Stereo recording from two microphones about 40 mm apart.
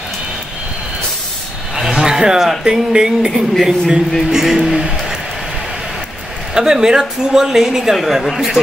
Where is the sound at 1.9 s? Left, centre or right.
Centre.